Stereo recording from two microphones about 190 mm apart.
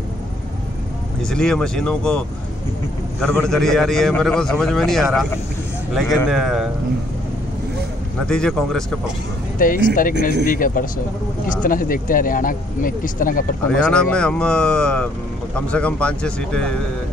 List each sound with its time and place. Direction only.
1.2 s a man's voice: 5° left (ahead or behind)
8.3 s a man's voice: 5° left (ahead or behind)
9.6 s speech: 45° left (ahead or behind)
13.7 s a man's voice: 5° left (ahead or behind)